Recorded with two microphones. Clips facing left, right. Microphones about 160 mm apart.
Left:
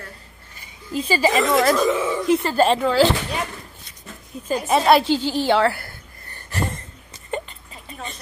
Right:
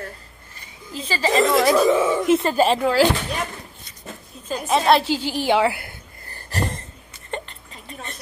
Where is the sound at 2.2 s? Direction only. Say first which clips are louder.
Right 1 dB; 20° right (ahead or behind).